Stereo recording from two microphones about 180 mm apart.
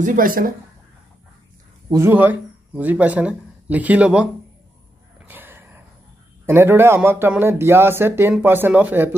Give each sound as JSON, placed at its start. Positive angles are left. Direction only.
{"t": 0.0, "sound": "speech", "side_deg": -45}
{"t": 1.9, "sound": "speech", "side_deg": -15}
{"t": 5.2, "sound": "a sound", "side_deg": -10}
{"t": 6.4, "sound": "speech", "side_deg": -15}